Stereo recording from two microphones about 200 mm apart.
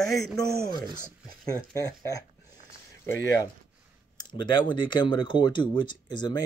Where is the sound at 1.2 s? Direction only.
20° left (ahead or behind).